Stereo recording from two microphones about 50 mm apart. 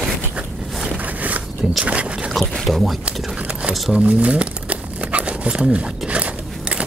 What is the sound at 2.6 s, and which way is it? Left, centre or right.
Speech, centre.